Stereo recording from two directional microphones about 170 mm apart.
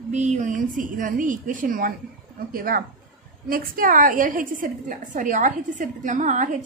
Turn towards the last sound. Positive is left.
turn(degrees=-45)  # may be behind; listen again after turning